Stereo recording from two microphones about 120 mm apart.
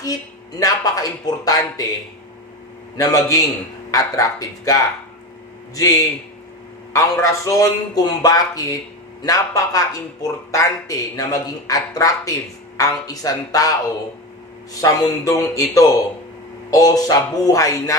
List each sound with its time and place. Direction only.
0.6 s speech: 30° left (ahead or behind)
3.0 s a man's voice: 30° left (ahead or behind)
14.8 s a man's voice: 30° left (ahead or behind)